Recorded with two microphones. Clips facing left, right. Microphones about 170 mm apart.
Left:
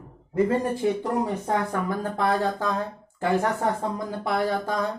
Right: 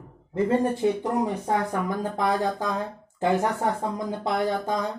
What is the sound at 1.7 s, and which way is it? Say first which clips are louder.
Speech: even; 15° right (ahead or behind).